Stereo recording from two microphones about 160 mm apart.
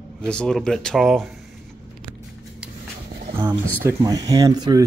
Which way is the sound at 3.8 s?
20° right (ahead or behind).